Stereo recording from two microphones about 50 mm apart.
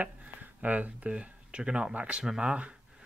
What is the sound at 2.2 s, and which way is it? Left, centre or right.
Speech, centre.